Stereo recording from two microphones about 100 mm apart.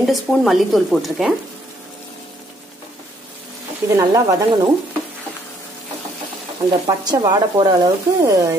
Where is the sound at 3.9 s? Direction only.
35° right (ahead or behind).